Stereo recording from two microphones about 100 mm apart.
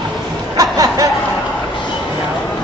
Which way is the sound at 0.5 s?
35° right (ahead or behind).